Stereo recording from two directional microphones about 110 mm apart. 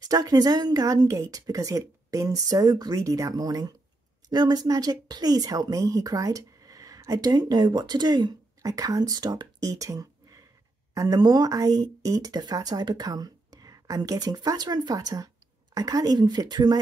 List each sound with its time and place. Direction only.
0.1 s speech: 35° right (ahead or behind)